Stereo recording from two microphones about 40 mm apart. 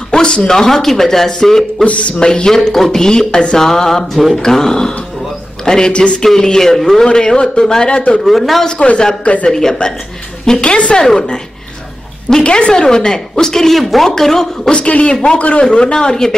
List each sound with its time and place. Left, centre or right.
0.1 s a sound: left
0.5 s a woman's voice: centre
1.9 s speech: left
2.1 s a woman's voice: left
6.8 s speech: centre
7.1 s a woman's voice: centre
7.9 s a man's voice: left
8.3 s speech: centre
8.6 s a man's voice: left
9.5 s a woman's voice: centre
10.6 s a man's voice: left
12.4 s a woman's voice: left
14.7 s a man's voice: left